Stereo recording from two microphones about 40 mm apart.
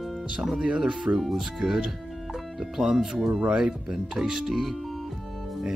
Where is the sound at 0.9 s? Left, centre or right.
Centre.